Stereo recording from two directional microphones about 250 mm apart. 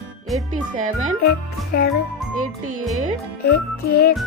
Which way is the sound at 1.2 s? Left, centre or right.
Left.